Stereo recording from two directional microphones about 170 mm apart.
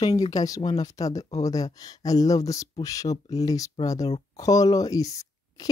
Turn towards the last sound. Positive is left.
turn(degrees=20)  # may be behind; listen again after turning